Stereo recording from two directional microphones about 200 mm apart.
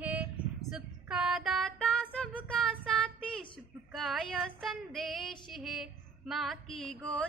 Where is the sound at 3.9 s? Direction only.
Centre (ahead or behind).